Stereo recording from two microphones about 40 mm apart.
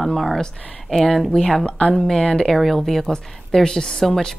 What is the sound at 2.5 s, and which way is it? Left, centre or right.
Speech, centre.